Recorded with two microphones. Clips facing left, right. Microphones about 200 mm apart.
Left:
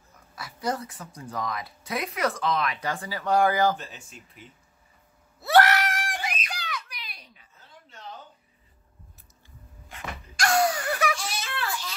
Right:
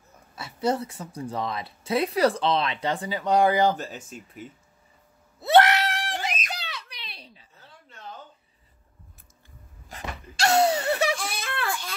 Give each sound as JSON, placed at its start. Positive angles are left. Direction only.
{"t": 0.4, "sound": "speech", "side_deg": -25}
{"t": 3.7, "sound": "speech", "side_deg": -40}
{"t": 5.4, "sound": "a sound", "side_deg": -20}
{"t": 9.9, "sound": "wail", "side_deg": -40}
{"t": 10.3, "sound": "laughter", "side_deg": -25}
{"t": 11.1, "sound": "a sound", "side_deg": -55}